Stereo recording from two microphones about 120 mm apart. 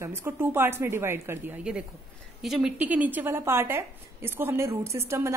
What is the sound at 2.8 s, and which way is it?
A woman's voice, 15° right (ahead or behind).